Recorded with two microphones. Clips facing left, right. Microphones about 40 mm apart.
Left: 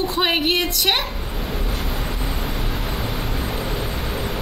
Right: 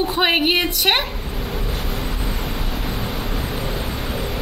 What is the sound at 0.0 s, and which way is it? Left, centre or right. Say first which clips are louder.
A woman's voice: right 2 dB; centre.